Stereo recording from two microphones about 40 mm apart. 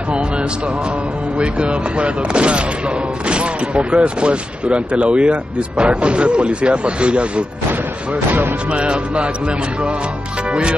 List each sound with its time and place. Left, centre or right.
1.4 s speech: right
8.1 s speech: right
8.7 s speech: right